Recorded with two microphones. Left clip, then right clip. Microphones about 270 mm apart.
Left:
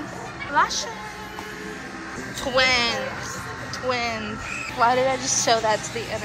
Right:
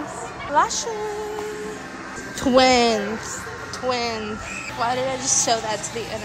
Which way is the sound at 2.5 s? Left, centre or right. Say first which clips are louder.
Right 4 dB; right.